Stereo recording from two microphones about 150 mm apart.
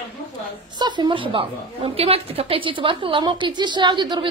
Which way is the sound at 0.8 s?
30° right (ahead or behind).